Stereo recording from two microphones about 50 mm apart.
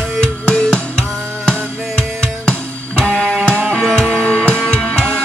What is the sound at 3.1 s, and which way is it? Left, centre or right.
Music, centre.